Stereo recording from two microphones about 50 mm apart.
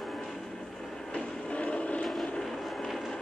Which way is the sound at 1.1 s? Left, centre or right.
Left.